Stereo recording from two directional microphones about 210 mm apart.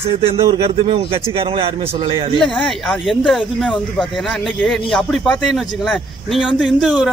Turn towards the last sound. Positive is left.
turn(degrees=0)  # may be behind; listen again after turning